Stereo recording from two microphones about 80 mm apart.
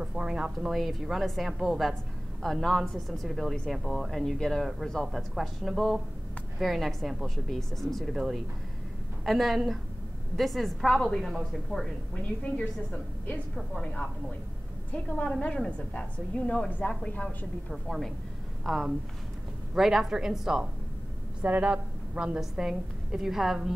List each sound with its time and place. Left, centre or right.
0.0 s a woman's voice: centre
12.5 s a woman's voice: centre
14.9 s a woman's voice: centre
17.6 s a woman's voice: centre